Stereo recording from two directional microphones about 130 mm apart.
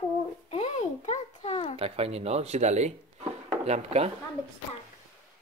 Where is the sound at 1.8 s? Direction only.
50° right (ahead or behind).